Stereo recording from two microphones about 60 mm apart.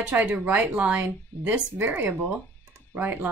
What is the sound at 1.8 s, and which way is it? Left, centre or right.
Speech, right.